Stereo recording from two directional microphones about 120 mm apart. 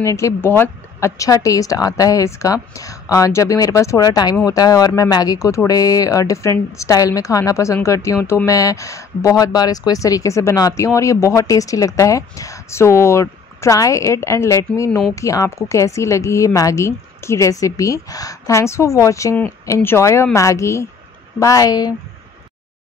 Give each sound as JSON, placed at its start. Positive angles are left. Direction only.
{"t": 0.0, "sound": "speech", "side_deg": 25}
{"t": 14.9, "sound": "speech", "side_deg": 0}
{"t": 15.1, "sound": "speech", "side_deg": 25}